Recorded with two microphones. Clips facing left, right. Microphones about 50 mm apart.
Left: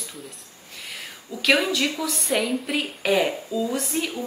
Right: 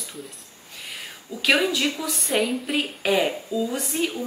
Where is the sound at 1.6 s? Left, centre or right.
Centre.